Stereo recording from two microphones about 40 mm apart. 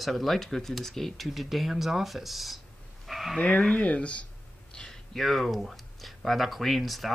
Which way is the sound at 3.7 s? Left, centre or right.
Left.